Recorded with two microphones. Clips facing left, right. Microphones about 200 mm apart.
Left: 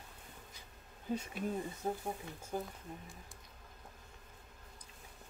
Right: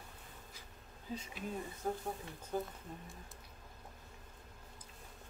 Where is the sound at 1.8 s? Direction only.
20° left (ahead or behind).